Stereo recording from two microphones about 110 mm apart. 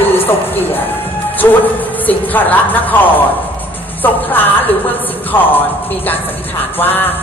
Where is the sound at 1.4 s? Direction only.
25° left (ahead or behind).